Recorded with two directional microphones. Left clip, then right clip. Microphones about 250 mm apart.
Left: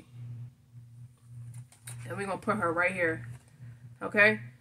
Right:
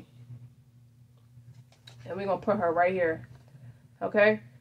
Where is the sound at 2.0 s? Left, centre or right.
Centre.